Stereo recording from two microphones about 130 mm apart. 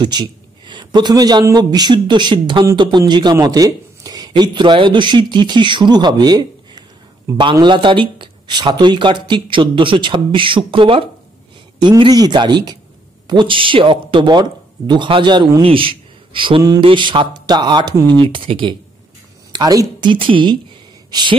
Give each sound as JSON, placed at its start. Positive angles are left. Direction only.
{"t": 0.0, "sound": "a man's voice", "side_deg": -35}
{"t": 18.2, "sound": "a man's voice", "side_deg": -45}
{"t": 19.5, "sound": "a man's voice", "side_deg": -30}